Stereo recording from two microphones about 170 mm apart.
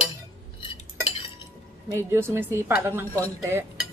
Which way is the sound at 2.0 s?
15° right (ahead or behind).